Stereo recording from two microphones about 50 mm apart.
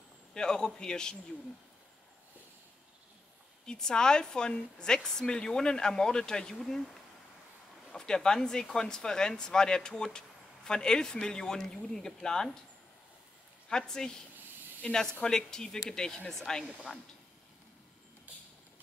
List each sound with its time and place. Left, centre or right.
0.3 s a woman's voice: centre
3.6 s a woman's voice: centre
13.7 s a woman's voice: centre